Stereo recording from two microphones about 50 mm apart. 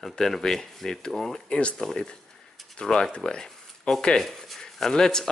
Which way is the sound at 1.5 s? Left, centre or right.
Left.